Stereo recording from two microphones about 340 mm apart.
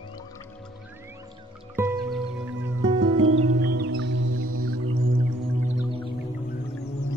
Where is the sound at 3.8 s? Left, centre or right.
Right.